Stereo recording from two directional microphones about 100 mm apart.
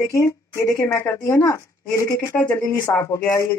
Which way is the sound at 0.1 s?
30° left (ahead or behind).